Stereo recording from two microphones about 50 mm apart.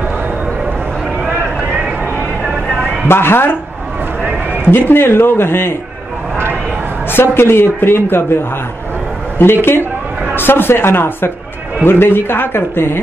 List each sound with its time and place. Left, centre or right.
3.1 s speech: left
4.6 s speech: left
7.1 s speech: left
9.4 s speech: left